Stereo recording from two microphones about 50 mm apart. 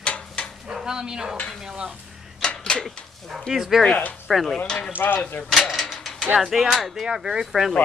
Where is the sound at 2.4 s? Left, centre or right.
Centre.